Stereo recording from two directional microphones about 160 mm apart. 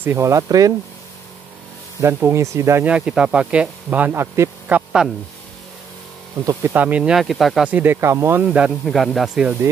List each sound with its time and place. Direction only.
0.0 s speech: 15° right (ahead or behind)
2.0 s speech: 15° right (ahead or behind)
6.4 s speech: 15° right (ahead or behind)